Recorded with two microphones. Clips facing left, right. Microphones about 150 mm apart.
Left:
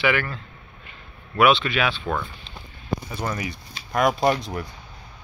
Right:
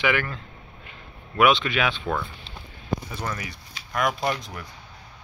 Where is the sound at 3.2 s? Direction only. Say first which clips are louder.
Left 4 dB; 20° left (ahead or behind).